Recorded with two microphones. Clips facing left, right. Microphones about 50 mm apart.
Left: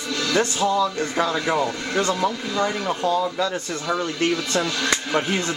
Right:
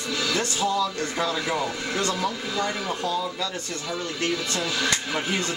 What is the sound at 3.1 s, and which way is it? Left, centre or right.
Speech, left.